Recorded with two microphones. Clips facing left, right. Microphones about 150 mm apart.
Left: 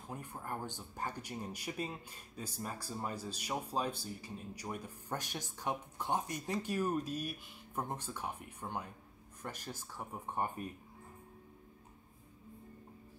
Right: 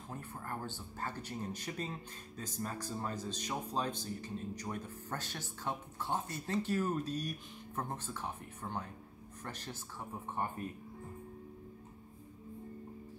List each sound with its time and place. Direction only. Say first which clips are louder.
0.1 s speech: left 1 dB; 15° left (ahead or behind)